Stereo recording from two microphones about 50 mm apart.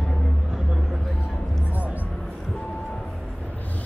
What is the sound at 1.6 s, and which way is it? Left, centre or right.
Music, right.